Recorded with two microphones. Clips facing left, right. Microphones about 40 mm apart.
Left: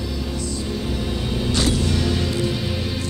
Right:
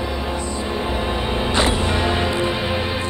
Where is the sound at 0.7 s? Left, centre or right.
Right.